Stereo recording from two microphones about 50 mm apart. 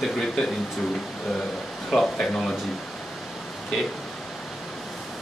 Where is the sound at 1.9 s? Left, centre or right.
Centre.